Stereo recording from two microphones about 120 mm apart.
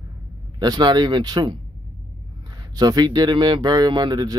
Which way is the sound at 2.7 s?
35° right (ahead or behind).